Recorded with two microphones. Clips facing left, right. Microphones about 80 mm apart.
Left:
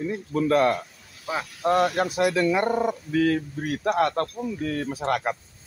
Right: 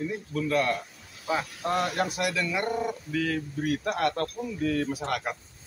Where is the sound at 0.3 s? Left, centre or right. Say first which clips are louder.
Left 6 dB; left.